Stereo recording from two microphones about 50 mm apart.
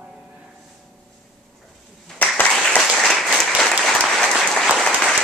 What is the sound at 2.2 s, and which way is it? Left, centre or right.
Applause, left.